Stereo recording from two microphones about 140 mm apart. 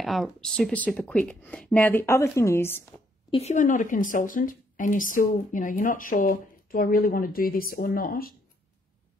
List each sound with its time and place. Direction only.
0.0 s speech: centre (ahead or behind); by 2.9 s 20° left (ahead or behind)
3.3 s speech: 50° left (ahead or behind); by 8.4 s 90° left